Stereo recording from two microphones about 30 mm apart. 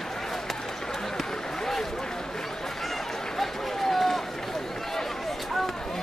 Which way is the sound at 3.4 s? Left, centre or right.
Centre.